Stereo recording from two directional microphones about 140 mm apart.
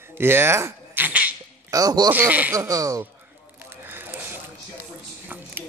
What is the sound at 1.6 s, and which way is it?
Speech, 25° right (ahead or behind).